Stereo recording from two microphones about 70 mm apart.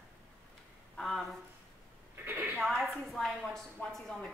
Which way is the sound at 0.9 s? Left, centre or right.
Centre.